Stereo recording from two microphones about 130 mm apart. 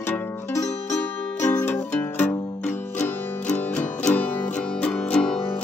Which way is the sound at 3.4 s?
5° left (ahead or behind).